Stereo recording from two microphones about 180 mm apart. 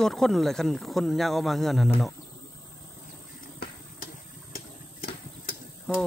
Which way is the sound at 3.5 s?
50° left (ahead or behind).